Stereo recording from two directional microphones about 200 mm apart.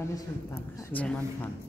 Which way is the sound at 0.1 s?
15° left (ahead or behind).